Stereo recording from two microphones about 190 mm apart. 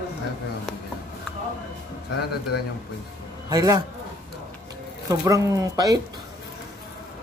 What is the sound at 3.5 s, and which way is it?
Speech, 20° right (ahead or behind).